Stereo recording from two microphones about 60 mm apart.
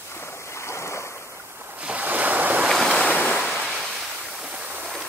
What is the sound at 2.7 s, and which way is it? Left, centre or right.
Waves, centre.